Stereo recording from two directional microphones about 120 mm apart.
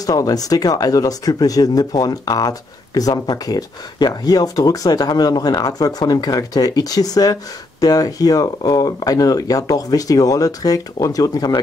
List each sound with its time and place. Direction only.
0.0 s speech: 30° left (ahead or behind)